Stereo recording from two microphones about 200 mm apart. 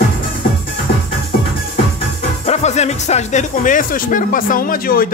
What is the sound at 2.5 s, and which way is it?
Speech, 35° left (ahead or behind).